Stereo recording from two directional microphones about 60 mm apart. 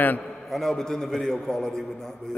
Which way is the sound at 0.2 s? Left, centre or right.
Centre.